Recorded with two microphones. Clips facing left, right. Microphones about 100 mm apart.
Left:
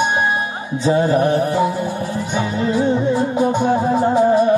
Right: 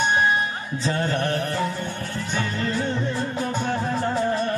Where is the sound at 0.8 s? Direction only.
10° left (ahead or behind).